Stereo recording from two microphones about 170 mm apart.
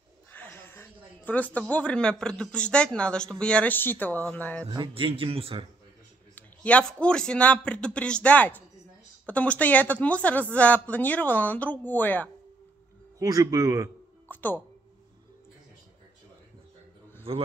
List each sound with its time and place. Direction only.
0.3 s speech: 10° left (ahead or behind)
4.7 s speech: 30° right (ahead or behind)
6.3 s speech: 10° left (ahead or behind)
13.2 s speech: 20° right (ahead or behind)
14.2 s music: 10° left (ahead or behind)
17.3 s speech: 35° right (ahead or behind)